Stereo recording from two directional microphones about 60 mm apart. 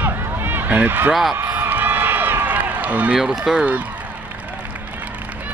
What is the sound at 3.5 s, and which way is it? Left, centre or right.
Speech, right.